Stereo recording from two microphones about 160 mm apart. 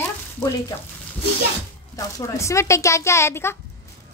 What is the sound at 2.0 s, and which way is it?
A woman's voice, 20° left (ahead or behind).